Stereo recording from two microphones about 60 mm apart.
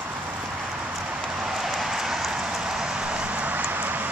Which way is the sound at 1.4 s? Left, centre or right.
Centre.